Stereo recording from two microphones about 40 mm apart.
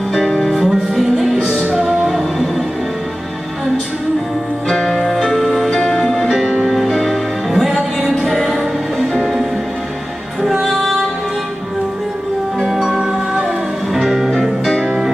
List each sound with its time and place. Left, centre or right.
0.4 s music: centre
1.4 s music: centre
2.0 s music: centre
4.6 s music: centre
5.7 s music: centre
6.2 s music: centre
12.6 s music: centre
14.8 s music: centre